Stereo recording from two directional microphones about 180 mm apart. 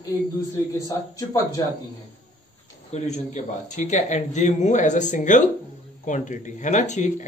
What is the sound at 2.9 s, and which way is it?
Speech, 40° left (ahead or behind).